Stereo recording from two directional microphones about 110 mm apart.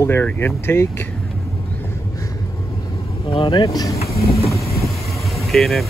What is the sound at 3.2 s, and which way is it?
Speech, 50° left (ahead or behind).